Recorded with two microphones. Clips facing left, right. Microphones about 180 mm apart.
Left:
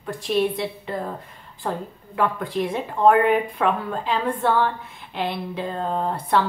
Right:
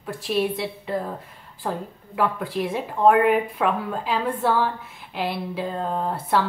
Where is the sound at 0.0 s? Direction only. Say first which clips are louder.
Left 2 dB; 5° right (ahead or behind).